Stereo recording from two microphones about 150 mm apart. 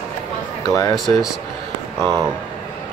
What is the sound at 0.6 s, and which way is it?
Speech, 20° left (ahead or behind).